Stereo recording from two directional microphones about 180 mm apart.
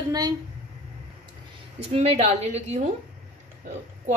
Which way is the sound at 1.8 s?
35° right (ahead or behind).